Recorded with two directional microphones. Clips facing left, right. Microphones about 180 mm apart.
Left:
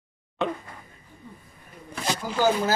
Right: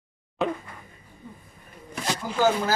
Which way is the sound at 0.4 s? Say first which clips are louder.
Right 1 dB; centre (ahead or behind).